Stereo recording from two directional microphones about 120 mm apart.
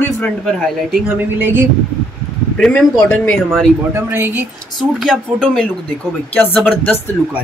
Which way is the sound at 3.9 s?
20° right (ahead or behind).